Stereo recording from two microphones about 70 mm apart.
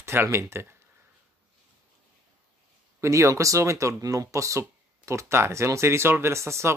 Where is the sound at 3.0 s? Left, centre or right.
Right.